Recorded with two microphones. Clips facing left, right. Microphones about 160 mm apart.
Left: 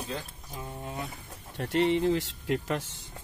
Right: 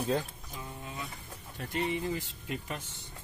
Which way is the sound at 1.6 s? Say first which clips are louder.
Left 8 dB; 75° left (ahead or behind).